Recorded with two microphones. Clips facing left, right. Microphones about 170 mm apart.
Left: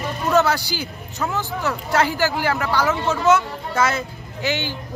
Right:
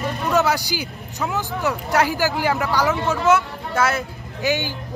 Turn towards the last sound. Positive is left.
turn(degrees=-15)  # may be behind; listen again after turning